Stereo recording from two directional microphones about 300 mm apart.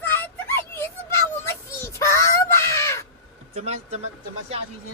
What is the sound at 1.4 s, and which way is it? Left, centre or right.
Crow, centre.